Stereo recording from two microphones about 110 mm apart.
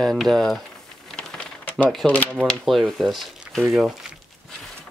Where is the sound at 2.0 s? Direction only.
Centre (ahead or behind).